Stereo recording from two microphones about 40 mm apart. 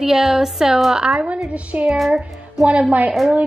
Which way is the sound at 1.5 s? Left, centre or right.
Right.